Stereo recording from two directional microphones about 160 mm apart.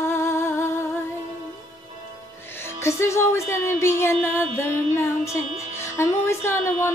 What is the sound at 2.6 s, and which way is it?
Female singing, 15° left (ahead or behind).